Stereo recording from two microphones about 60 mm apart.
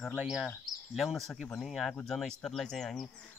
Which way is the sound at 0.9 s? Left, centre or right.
Centre.